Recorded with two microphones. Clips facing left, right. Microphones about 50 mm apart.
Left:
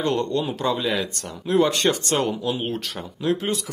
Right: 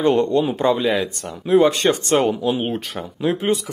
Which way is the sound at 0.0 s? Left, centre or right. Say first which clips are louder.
Right 6 dB; right.